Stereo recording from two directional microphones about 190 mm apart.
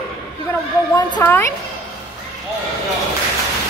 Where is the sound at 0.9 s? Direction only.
15° left (ahead or behind).